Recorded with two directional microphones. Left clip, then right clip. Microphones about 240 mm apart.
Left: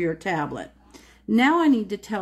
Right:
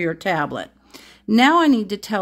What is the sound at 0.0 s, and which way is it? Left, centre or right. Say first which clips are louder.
Speech: right 4 dB; right.